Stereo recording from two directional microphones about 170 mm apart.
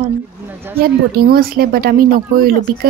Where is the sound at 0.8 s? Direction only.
60° right (ahead or behind).